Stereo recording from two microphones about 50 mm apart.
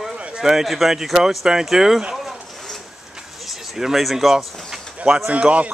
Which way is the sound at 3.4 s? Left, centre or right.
Centre.